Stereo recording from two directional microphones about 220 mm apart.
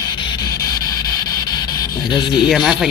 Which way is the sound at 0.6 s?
15° left (ahead or behind).